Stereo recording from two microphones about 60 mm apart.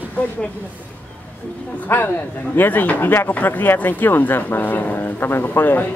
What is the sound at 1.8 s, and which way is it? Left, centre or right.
Speech, left.